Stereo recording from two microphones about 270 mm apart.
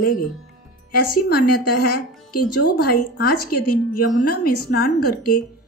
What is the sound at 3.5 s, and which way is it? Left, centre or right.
Speech, left.